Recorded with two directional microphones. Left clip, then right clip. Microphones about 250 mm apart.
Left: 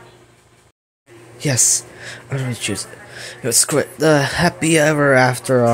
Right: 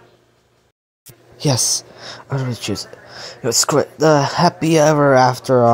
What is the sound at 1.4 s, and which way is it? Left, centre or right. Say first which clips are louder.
Speech: even; right.